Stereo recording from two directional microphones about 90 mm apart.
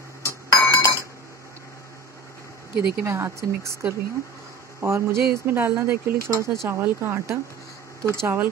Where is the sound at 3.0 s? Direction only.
30° right (ahead or behind).